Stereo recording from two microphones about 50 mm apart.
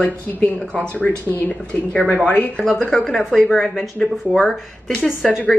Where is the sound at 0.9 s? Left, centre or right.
Left.